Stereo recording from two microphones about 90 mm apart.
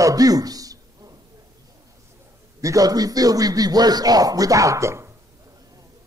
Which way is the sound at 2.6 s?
40° right (ahead or behind).